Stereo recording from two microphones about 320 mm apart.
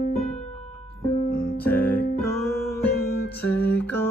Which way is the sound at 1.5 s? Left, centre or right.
Left.